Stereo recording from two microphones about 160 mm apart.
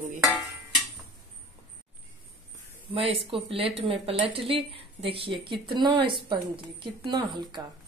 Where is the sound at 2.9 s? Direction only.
35° right (ahead or behind).